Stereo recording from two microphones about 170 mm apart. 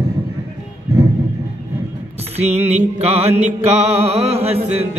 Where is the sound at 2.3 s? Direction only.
40° right (ahead or behind).